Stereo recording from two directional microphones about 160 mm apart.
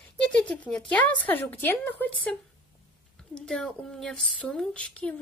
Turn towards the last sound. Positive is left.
turn(degrees=5)  # may be behind; listen again after turning